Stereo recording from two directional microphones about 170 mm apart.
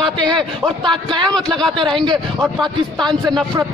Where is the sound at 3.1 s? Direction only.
5° left (ahead or behind).